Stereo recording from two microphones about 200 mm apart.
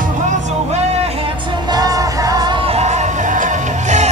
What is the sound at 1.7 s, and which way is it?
Music, 20° right (ahead or behind).